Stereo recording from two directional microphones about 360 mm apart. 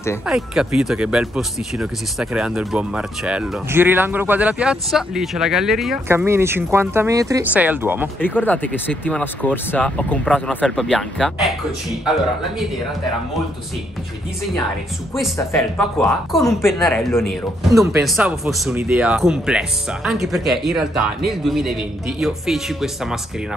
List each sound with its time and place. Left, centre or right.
0.0 s speech: centre
8.2 s speech: centre
15.1 s speech: centre